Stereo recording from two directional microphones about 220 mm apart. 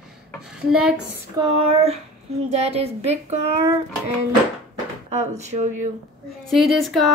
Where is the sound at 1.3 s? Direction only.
25° right (ahead or behind).